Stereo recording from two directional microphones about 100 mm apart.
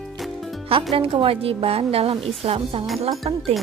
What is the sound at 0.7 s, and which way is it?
A woman's voice, 65° right (ahead or behind).